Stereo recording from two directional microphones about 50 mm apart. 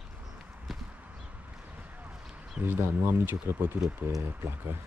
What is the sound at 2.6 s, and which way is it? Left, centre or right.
Speech, right.